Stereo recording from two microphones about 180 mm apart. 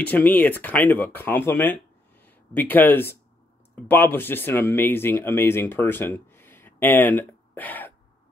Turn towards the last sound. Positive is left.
turn(degrees=10)  # may be behind; listen again after turning